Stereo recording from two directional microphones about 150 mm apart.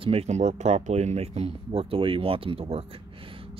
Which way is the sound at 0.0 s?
40° right (ahead or behind).